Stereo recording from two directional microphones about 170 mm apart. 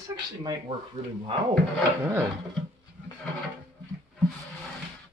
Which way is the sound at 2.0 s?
15° right (ahead or behind).